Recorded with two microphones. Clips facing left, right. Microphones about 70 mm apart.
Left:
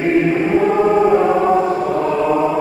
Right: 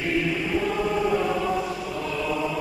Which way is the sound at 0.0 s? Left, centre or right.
Left.